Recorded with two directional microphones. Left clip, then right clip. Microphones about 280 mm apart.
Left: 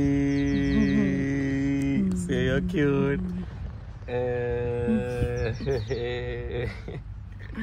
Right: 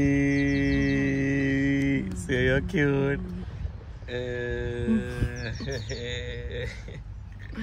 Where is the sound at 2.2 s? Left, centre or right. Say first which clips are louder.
Right 4 dB; right.